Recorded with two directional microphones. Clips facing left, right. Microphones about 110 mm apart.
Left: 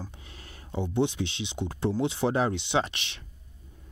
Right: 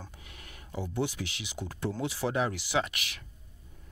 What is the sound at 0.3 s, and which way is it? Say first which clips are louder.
Speech: left 4 dB; 30° left (ahead or behind).